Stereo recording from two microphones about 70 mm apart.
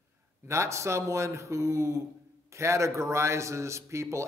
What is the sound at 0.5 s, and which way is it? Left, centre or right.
A man's voice, right.